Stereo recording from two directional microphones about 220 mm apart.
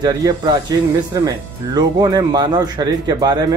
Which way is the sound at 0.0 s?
20° right (ahead or behind).